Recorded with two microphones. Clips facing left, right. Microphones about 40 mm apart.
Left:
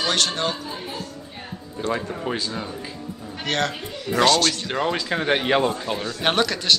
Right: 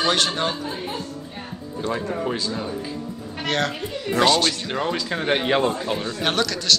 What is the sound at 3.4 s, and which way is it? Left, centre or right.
A woman's voice, centre.